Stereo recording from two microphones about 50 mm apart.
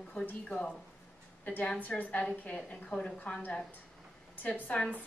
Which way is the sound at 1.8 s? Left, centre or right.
Left.